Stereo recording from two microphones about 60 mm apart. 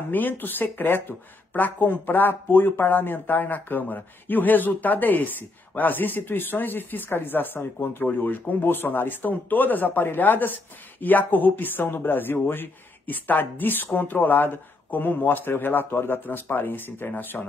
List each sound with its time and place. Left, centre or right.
0.1 s a woman's voice: left